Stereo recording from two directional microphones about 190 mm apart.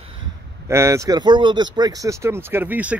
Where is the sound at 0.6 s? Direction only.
15° right (ahead or behind).